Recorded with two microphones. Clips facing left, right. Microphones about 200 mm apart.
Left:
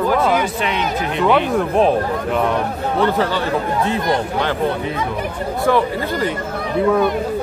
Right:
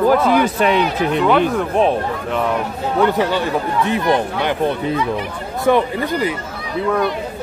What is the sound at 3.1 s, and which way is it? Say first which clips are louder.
Speech: right 1 dB; 15° right (ahead or behind).